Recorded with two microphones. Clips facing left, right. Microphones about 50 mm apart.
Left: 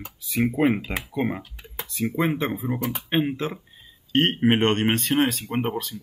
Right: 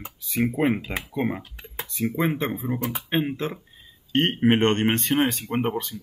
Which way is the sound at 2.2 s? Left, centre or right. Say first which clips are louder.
Left 1 dB; centre.